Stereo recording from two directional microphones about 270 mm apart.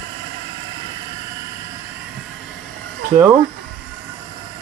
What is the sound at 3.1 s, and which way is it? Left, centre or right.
Speech, centre.